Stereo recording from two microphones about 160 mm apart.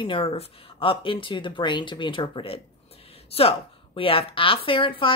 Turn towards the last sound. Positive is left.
turn(degrees=35)  # may be behind; listen again after turning